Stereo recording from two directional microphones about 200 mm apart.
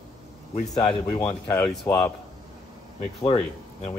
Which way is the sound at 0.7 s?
25° left (ahead or behind).